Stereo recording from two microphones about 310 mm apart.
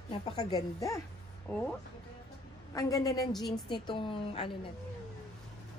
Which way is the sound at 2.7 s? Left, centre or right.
Centre.